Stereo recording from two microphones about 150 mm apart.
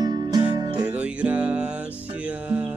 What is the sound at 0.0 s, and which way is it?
Music, 25° right (ahead or behind).